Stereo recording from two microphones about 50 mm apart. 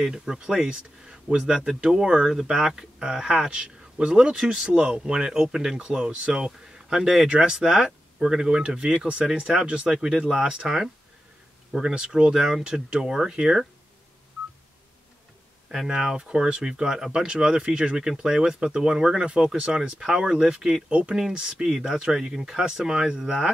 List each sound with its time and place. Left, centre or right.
0.0 s speech: centre
9.8 s speech: centre
15.7 s speech: centre